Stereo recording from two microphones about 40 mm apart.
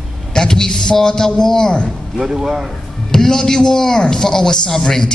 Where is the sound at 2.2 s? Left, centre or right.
Centre.